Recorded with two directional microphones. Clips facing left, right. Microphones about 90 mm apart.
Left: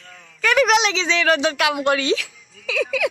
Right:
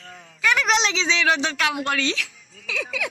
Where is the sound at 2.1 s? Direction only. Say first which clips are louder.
Left 1 dB; centre (ahead or behind).